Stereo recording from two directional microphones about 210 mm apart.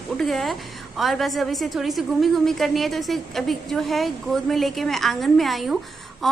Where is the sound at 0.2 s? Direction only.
Centre (ahead or behind).